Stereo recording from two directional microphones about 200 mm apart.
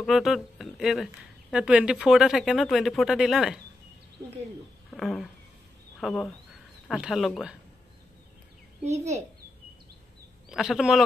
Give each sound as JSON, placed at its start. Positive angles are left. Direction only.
{"t": 0.0, "sound": "speech", "side_deg": 0}
{"t": 4.9, "sound": "a sound", "side_deg": 0}
{"t": 5.9, "sound": "speech", "side_deg": 5}
{"t": 8.8, "sound": "a child's voice", "side_deg": -35}
{"t": 10.5, "sound": "speech", "side_deg": 0}